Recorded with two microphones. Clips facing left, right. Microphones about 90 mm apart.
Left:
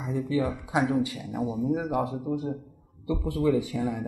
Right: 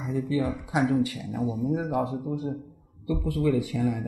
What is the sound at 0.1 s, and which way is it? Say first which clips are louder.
Speech: even; 20° left (ahead or behind).